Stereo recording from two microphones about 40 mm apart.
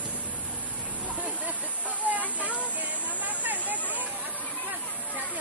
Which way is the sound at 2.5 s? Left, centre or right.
Right.